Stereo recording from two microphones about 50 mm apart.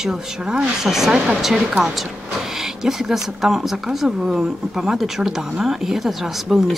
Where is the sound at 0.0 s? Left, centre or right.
Centre.